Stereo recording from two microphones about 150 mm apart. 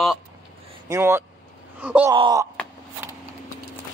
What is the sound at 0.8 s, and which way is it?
Speech, 20° right (ahead or behind).